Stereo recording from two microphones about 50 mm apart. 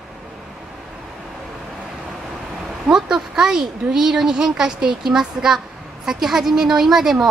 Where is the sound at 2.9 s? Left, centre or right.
Centre.